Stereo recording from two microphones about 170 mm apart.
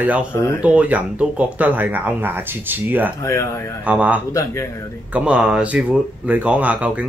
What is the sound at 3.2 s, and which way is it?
Speech, 15° left (ahead or behind).